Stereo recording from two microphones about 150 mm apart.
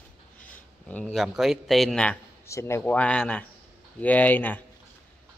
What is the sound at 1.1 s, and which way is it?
A man's voice, centre (ahead or behind).